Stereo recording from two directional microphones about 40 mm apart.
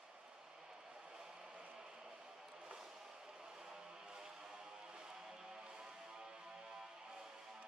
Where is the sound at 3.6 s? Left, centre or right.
Centre.